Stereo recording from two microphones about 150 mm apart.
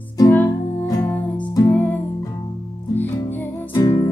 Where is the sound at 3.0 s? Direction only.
15° left (ahead or behind).